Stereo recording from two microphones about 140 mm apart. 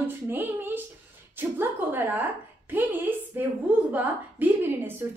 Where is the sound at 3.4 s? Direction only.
10° right (ahead or behind).